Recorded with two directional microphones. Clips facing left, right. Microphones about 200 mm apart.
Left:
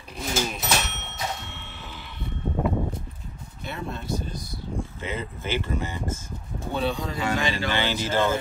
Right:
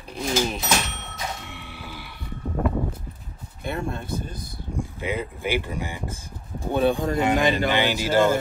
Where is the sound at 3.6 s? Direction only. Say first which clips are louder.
Right 5 dB; 50° right (ahead or behind).